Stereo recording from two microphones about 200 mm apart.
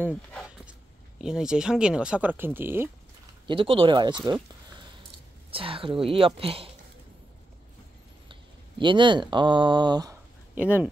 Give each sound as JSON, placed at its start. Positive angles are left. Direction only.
{"t": 0.7, "sound": "speech", "side_deg": -5}
{"t": 3.4, "sound": "speech", "side_deg": -25}
{"t": 5.5, "sound": "speech", "side_deg": -25}
{"t": 8.3, "sound": "speech", "side_deg": -25}
{"t": 10.5, "sound": "speech", "side_deg": -5}